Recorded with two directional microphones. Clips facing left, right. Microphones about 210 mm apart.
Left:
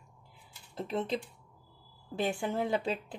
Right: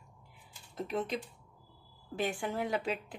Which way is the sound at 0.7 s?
30° left (ahead or behind).